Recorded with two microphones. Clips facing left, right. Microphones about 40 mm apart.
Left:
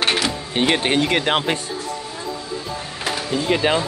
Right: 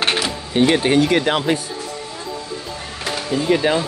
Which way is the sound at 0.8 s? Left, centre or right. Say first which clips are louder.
Right 3 dB; left.